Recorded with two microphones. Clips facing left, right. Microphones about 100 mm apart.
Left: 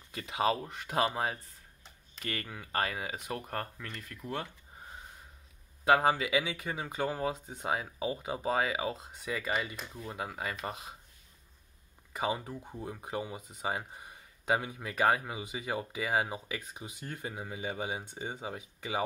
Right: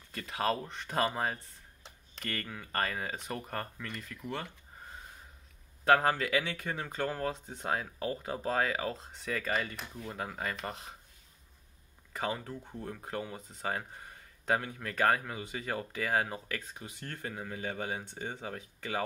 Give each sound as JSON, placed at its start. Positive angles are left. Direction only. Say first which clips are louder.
{"t": 0.1, "sound": "speech", "louder": "left 2 dB", "side_deg": 15}
{"t": 5.9, "sound": "speech", "louder": "even", "side_deg": 10}
{"t": 12.1, "sound": "speech", "louder": "left 2 dB", "side_deg": 15}